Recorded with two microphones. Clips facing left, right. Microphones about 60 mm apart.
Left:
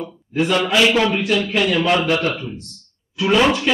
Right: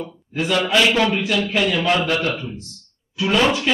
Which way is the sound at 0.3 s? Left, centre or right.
Centre.